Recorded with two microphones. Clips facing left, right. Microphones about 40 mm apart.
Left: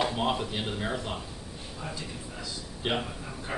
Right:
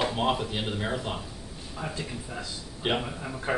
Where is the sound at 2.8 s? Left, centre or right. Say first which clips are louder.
Right 2 dB; centre.